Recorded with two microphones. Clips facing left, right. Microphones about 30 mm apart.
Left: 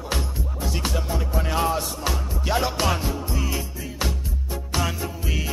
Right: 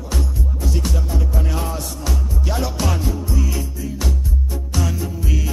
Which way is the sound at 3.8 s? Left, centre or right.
Left.